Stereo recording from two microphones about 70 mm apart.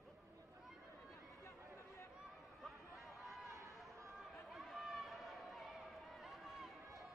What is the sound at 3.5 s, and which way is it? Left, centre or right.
Chatter, right.